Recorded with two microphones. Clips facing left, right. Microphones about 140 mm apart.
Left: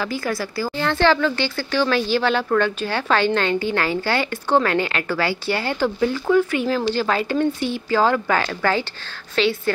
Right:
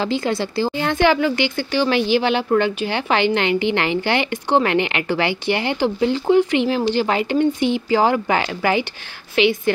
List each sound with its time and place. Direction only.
0.0 s speech: 25° right (ahead or behind)